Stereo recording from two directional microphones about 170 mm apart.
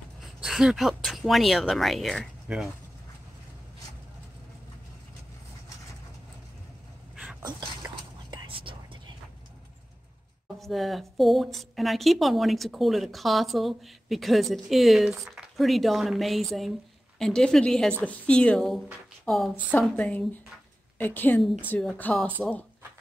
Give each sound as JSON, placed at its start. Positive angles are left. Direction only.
{"t": 0.2, "sound": "speech", "side_deg": -5}
{"t": 7.4, "sound": "whispering", "side_deg": -25}
{"t": 10.6, "sound": "a woman's voice", "side_deg": 0}
{"t": 21.4, "sound": "a woman's voice", "side_deg": 0}